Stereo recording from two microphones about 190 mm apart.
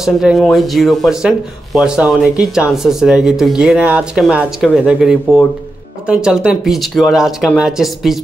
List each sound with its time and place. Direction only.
0.0 s speech: centre (ahead or behind)